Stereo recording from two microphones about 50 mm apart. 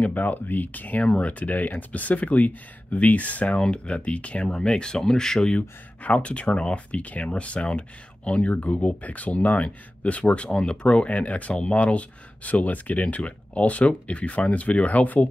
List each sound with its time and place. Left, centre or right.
0.0 s speech: left
3.5 s speech: centre
5.6 s speech: left